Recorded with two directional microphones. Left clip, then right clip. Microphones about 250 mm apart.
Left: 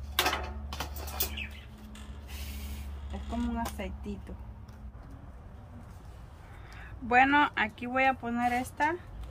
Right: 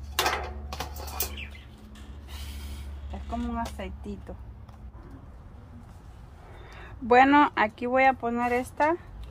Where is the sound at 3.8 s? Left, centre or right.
Centre.